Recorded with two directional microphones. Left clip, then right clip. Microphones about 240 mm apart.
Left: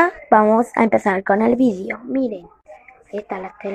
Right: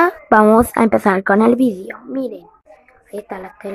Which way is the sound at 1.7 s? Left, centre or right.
Centre.